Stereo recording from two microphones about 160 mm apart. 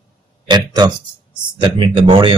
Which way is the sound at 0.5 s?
25° right (ahead or behind).